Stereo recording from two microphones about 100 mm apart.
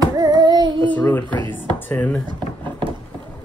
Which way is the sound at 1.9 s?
15° left (ahead or behind).